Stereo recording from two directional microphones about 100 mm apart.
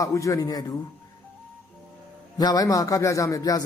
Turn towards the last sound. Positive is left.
turn(degrees=35)  # may be behind; listen again after turning